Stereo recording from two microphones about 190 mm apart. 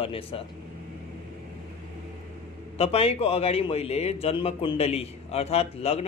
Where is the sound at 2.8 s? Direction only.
30° left (ahead or behind).